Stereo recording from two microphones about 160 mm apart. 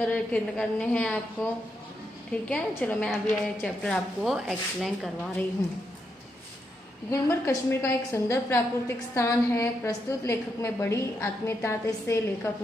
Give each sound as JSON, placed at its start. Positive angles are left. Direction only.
{"t": 0.0, "sound": "a woman's voice", "side_deg": 10}
{"t": 7.1, "sound": "a woman's voice", "side_deg": 15}